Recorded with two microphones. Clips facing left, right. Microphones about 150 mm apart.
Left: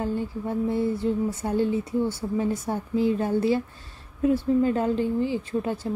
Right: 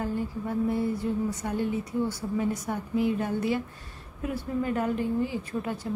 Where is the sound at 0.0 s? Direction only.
25° left (ahead or behind).